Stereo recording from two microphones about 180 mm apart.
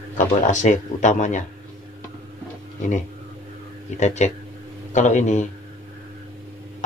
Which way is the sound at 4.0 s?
40° left (ahead or behind).